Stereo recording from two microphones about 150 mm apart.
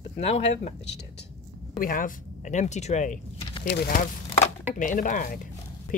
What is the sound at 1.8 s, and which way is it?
Speech, 65° left (ahead or behind).